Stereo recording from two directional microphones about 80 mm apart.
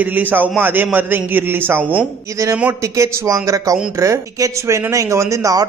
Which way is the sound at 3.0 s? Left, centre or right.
Right.